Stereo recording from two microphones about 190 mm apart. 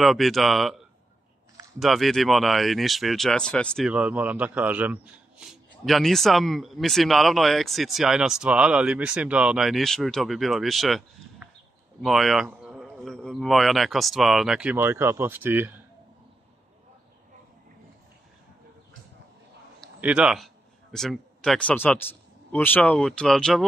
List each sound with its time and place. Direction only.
0.0 s speech: centre (ahead or behind)
1.8 s speech: centre (ahead or behind)
20.0 s a man's voice: 5° right (ahead or behind)